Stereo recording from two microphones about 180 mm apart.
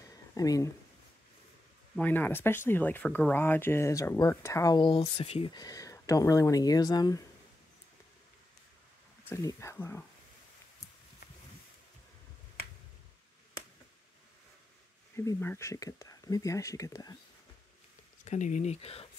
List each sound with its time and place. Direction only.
0.1 s a sound: 20° left (ahead or behind)
2.0 s speech: 10° left (ahead or behind)
9.3 s speech: 15° left (ahead or behind)
15.1 s speech: 15° left (ahead or behind)
18.2 s speech: 40° left (ahead or behind)